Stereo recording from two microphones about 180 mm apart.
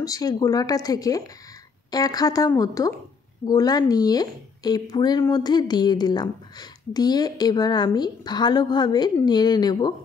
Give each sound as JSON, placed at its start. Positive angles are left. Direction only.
{"t": 0.0, "sound": "a woman's voice", "side_deg": 20}